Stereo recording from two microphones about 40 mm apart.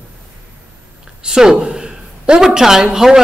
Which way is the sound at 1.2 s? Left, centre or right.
Centre.